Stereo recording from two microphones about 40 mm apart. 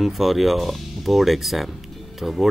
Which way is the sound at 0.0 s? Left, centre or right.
Centre.